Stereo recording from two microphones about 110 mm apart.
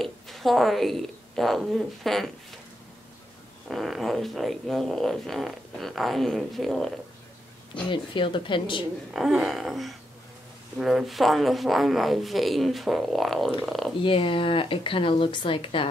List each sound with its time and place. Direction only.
0.0 s a woman's voice: centre (ahead or behind)
3.7 s speech: centre (ahead or behind)
7.9 s speech: 50° left (ahead or behind)
9.1 s speech: 5° right (ahead or behind)
14.0 s speech: 50° left (ahead or behind)